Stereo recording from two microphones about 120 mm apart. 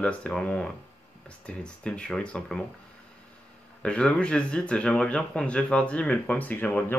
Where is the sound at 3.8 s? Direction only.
10° left (ahead or behind).